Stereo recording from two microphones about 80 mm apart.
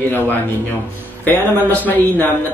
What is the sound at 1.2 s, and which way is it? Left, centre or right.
A man's voice, left.